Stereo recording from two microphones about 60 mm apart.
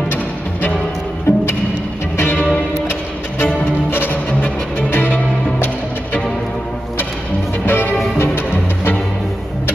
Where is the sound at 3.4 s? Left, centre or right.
Left.